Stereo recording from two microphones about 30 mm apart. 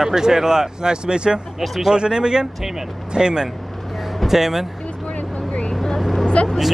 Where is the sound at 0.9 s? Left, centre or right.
Right.